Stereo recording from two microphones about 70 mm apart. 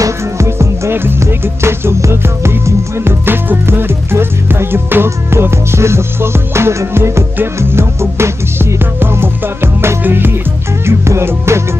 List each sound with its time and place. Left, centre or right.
0.0 s music: right